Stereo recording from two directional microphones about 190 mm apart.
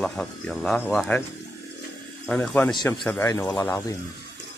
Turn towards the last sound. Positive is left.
turn(degrees=20)  # may be behind; listen again after turning